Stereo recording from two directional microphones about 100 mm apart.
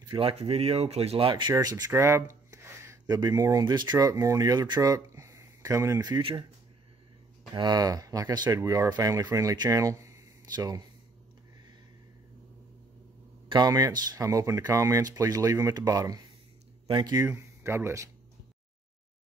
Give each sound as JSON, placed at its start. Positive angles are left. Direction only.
{"t": 0.1, "sound": "speech", "side_deg": -70}
{"t": 1.5, "sound": "speech", "side_deg": -40}
{"t": 1.9, "sound": "speech", "side_deg": -25}
{"t": 2.5, "sound": "a sound", "side_deg": -30}
{"t": 3.2, "sound": "speech", "side_deg": -40}
{"t": 3.6, "sound": "speech", "side_deg": -50}
{"t": 7.5, "sound": "speech", "side_deg": -45}
{"t": 10.5, "sound": "speech", "side_deg": -40}
{"t": 13.5, "sound": "speech", "side_deg": -45}
{"t": 17.3, "sound": "speech", "side_deg": -25}